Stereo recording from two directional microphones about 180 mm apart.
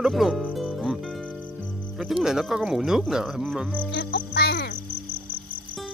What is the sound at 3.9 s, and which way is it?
Music, 85° left.